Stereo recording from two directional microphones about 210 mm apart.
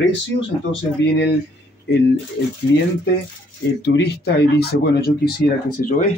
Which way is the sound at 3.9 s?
50° left (ahead or behind).